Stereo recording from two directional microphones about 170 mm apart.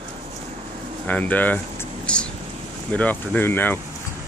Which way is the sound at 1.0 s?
10° left (ahead or behind).